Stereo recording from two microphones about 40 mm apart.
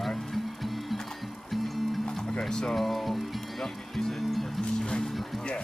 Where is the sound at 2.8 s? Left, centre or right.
Centre.